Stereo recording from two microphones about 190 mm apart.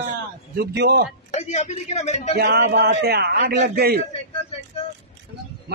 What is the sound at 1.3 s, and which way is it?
Speech, 35° left (ahead or behind).